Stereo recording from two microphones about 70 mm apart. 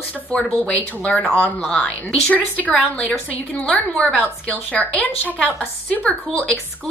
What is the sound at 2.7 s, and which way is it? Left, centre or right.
Speech, centre.